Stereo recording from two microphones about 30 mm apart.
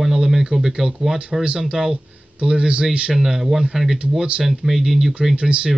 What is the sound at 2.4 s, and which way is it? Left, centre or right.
Speech, right.